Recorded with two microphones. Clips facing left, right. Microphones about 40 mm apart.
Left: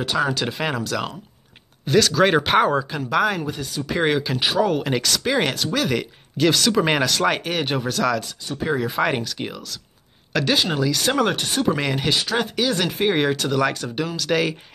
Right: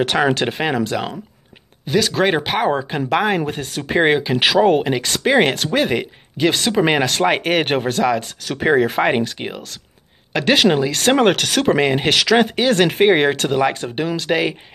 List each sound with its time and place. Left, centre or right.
0.0 s speech: right
0.7 s speech: right
1.9 s speech: centre
2.4 s speech: centre
2.7 s speech: right
3.4 s speech: right
3.9 s speech: right
4.6 s speech: right; by 7.1 s centre
7.1 s speech: right
7.4 s speech: right
9.0 s speech: right
10.4 s speech: right
11.3 s speech: right
11.7 s speech: right